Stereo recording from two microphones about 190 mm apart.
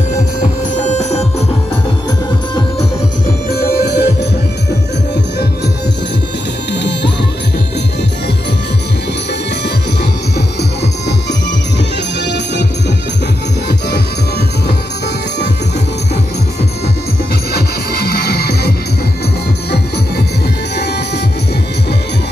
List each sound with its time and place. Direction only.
0.8 s music: 35° left (ahead or behind)
3.4 s music: 55° left (ahead or behind)
6.7 s music: 65° left (ahead or behind)
13.7 s music: 60° left (ahead or behind)
17.5 s music: 55° left (ahead or behind)